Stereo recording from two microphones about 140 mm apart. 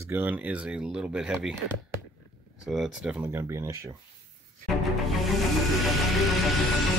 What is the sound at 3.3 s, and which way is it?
Speech, 20° right (ahead or behind).